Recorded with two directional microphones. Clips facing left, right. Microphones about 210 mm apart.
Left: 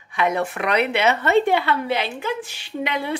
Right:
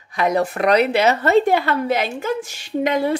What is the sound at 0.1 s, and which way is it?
A woman's voice, 40° right (ahead or behind).